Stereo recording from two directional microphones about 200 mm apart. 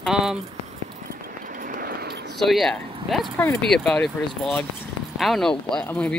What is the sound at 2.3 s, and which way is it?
Speech, centre (ahead or behind).